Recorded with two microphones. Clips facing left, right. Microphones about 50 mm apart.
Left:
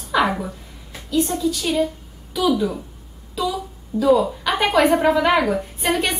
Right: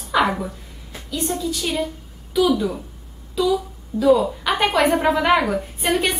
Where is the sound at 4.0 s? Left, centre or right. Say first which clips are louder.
Even; centre.